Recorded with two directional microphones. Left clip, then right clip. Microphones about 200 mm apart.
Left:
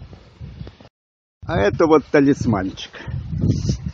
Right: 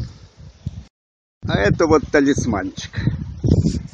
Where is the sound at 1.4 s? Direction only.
Centre (ahead or behind).